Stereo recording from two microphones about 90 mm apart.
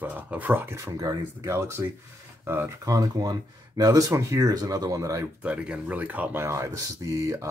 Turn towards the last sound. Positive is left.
turn(degrees=-35)  # may be behind; listen again after turning